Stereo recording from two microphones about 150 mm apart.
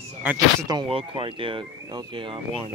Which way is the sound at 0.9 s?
35° right (ahead or behind).